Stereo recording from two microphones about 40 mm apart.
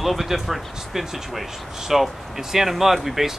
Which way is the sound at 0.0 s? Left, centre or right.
Centre.